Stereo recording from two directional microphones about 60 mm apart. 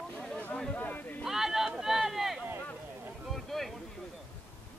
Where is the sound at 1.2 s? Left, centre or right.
Centre.